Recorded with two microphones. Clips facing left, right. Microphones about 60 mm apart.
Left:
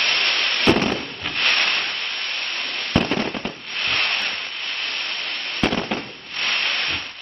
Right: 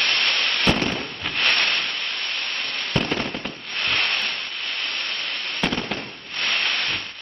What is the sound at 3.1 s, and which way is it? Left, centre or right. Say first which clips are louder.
Fireworks: left 3 dB; centre.